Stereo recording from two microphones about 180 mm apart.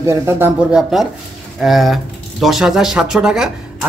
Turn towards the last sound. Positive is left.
turn(degrees=-5)  # may be behind; listen again after turning